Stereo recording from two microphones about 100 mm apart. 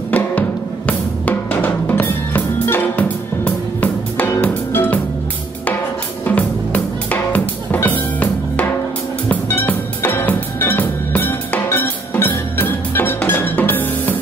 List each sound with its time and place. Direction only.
0.1 s drum: 15° left (ahead or behind)
6.2 s music: 15° left (ahead or behind)